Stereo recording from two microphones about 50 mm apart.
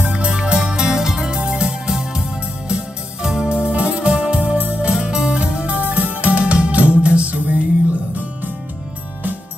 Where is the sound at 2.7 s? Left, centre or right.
Centre.